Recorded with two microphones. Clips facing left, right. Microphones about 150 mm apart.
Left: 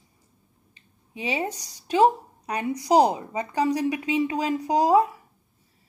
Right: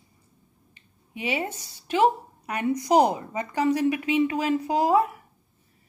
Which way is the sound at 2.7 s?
10° left (ahead or behind).